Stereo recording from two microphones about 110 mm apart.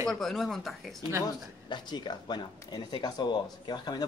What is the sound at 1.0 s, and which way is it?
Speech, 25° right (ahead or behind).